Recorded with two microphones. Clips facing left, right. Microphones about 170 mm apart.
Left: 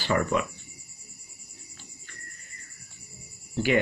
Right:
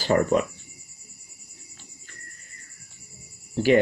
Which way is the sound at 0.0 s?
40° right (ahead or behind).